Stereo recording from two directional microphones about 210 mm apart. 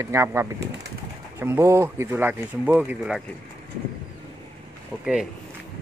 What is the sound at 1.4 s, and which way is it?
Speech, 10° right (ahead or behind).